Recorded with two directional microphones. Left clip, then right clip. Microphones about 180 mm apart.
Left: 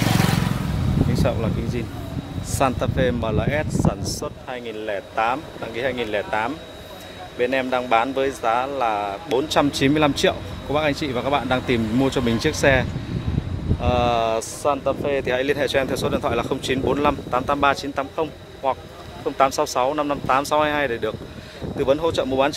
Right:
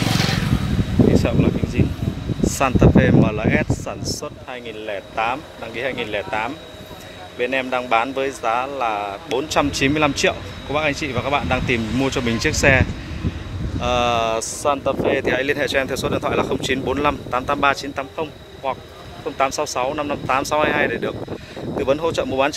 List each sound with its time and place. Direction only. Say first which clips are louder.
0.0 s vehicle: right 1 dB; 35° left (ahead or behind)
2.4 s speech: right 4 dB; 10° left (ahead or behind)
18.1 s speech: left 1 dB; 30° left (ahead or behind); by 22.5 s 5° left (ahead or behind)